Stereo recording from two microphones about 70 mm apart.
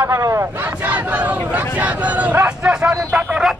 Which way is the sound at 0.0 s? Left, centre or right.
Right.